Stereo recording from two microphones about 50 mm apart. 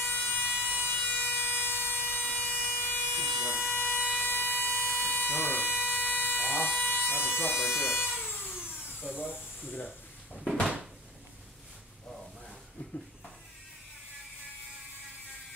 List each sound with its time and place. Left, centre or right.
0.0 s vehicle: left
6.3 s a sound: left
9.0 s speech: left
9.8 s drawer open or close: centre